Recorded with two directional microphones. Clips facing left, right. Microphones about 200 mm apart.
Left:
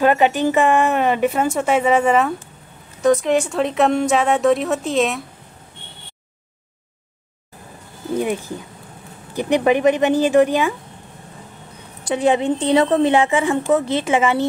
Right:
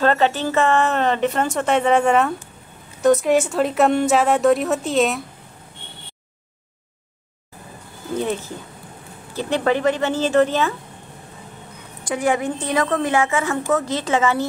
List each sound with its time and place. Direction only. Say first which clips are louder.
0.0 s a woman's voice: left 3 dB; 15° left (ahead or behind)
9.3 s speech: left 4 dB; 15° left (ahead or behind)
12.1 s a woman's voice: left 4 dB; 25° left (ahead or behind)